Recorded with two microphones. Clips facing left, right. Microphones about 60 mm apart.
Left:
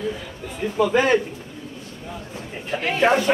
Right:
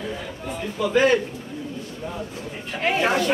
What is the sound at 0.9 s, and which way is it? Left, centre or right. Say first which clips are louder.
Speech: right 2 dB; centre.